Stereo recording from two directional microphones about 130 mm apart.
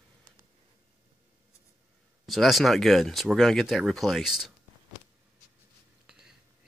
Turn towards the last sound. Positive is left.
turn(degrees=-5)  # may be behind; listen again after turning